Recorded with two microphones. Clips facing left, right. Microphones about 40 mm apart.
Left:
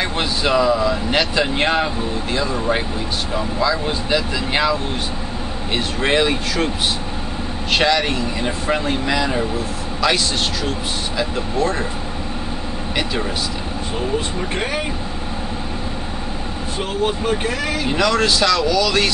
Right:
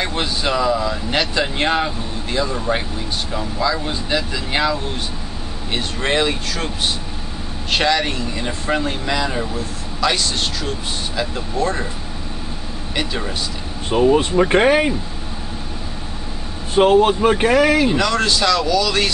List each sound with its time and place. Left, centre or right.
0.0 s speech: centre
5.8 s speech: centre
7.7 s speech: centre
13.9 s speech: right
16.7 s speech: right
17.8 s speech: centre